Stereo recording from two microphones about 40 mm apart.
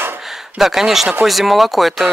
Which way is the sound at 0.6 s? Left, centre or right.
Centre.